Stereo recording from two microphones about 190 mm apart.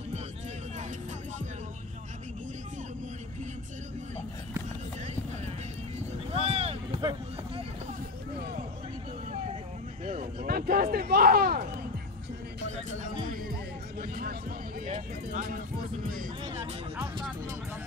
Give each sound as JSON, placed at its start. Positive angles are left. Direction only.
{"t": 5.9, "sound": "music", "side_deg": -35}
{"t": 10.0, "sound": "a sound", "side_deg": -45}
{"t": 12.6, "sound": "music", "side_deg": -40}
{"t": 14.9, "sound": "vehicle", "side_deg": -45}
{"t": 16.5, "sound": "music", "side_deg": -15}